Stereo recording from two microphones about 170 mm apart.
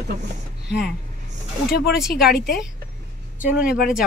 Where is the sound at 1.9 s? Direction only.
Centre (ahead or behind).